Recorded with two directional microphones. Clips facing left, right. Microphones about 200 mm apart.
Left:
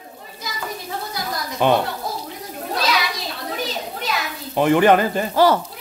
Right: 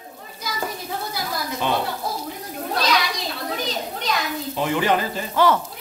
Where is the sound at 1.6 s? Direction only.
60° left (ahead or behind).